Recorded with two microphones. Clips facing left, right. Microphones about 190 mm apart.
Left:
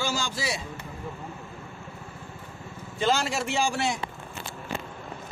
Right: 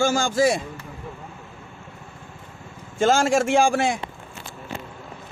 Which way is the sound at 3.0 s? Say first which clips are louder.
Right 7 dB; 50° right (ahead or behind).